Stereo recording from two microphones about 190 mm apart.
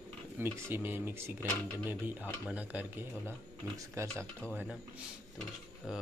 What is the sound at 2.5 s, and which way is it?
Speech, 10° right (ahead or behind).